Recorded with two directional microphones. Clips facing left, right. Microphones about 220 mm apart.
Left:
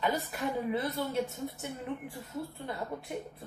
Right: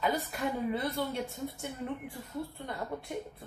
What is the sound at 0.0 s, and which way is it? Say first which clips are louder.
Speech: even; centre (ahead or behind).